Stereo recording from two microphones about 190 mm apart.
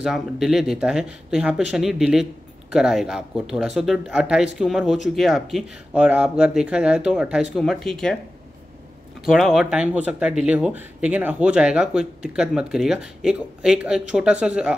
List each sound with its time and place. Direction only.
0.0 s speech: centre (ahead or behind)
9.2 s speech: centre (ahead or behind)